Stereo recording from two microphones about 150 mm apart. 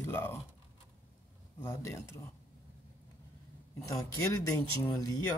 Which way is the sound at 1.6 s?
15° left (ahead or behind).